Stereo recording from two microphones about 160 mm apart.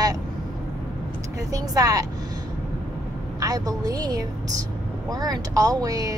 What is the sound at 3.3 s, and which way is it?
Speech, 20° right (ahead or behind).